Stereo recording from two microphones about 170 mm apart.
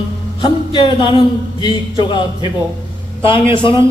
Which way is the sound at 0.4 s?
25° left (ahead or behind).